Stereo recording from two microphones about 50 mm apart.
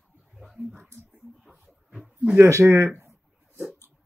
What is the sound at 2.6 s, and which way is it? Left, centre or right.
Speech, right.